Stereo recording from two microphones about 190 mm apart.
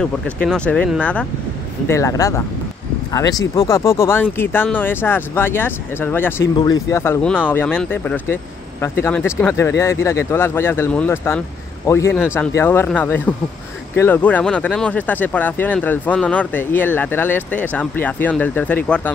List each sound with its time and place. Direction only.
0.0 s speech: 5° left (ahead or behind)